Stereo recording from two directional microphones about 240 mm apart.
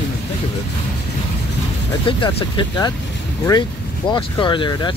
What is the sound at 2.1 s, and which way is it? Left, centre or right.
Speech, left.